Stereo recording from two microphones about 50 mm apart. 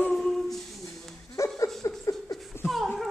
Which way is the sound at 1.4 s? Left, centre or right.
Left.